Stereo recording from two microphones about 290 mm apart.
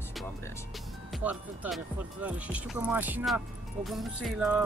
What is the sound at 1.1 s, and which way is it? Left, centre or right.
Speech, centre.